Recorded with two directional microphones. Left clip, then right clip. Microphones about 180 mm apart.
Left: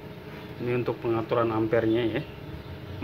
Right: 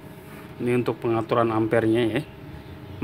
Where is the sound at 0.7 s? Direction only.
60° right (ahead or behind).